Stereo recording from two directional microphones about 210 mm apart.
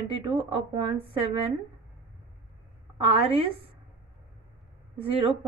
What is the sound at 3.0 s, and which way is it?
Speech, 25° right (ahead or behind).